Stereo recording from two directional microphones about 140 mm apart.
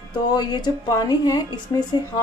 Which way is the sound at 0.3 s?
30° left (ahead or behind).